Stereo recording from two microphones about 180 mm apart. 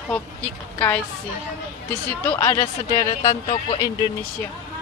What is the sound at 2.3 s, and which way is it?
A woman's voice, 20° left (ahead or behind).